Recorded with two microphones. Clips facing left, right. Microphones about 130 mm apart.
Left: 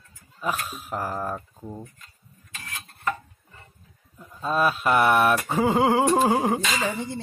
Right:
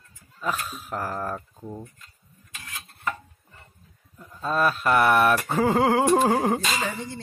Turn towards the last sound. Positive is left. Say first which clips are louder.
# even
turn(degrees=10)  # may be behind; listen again after turning